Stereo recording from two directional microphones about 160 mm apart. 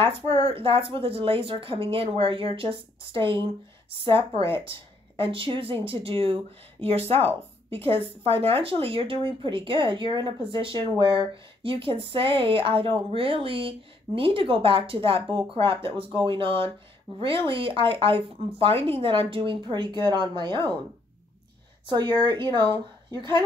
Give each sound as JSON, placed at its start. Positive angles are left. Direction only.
{"t": 0.5, "sound": "speech", "side_deg": -35}
{"t": 21.8, "sound": "speech", "side_deg": -30}